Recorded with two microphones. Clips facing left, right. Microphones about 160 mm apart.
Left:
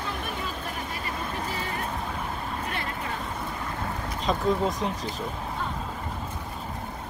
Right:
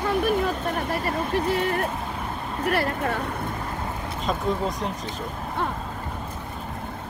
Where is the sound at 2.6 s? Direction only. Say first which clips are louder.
Right 8 dB; 65° right (ahead or behind).